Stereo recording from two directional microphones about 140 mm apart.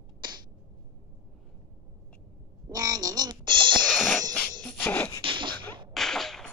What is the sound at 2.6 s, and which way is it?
Music, 25° right (ahead or behind).